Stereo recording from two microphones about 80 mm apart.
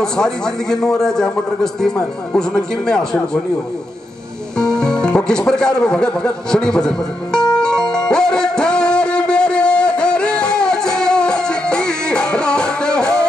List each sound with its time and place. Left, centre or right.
0.0 s a man's voice: centre
4.6 s speech: centre
7.5 s music: centre